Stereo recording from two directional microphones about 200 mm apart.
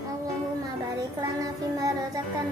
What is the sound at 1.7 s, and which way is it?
Music, 15° right (ahead or behind).